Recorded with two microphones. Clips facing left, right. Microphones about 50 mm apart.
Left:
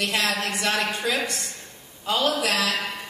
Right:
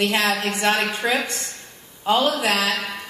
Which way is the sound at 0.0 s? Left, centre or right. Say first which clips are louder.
Right 4 dB; right.